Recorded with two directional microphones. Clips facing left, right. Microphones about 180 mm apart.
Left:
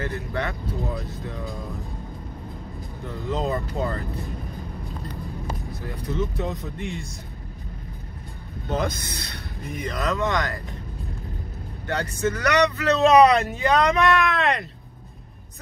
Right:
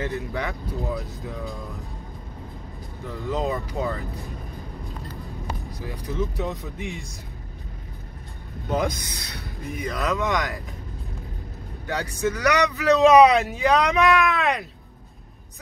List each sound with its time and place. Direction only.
0.3 s speech: 5° right (ahead or behind)
3.3 s speech: centre (ahead or behind)
6.1 s speech: centre (ahead or behind)
8.7 s speech: 15° right (ahead or behind)
9.6 s speech: centre (ahead or behind)
10.0 s speech: 15° right (ahead or behind)
12.0 s speech: 15° right (ahead or behind)
12.4 s speech: centre (ahead or behind)